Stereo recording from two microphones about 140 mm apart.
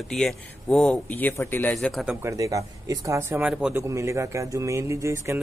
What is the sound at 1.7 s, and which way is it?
Speech, centre (ahead or behind).